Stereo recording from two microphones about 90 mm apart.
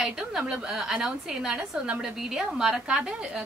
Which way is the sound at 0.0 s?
5° right (ahead or behind).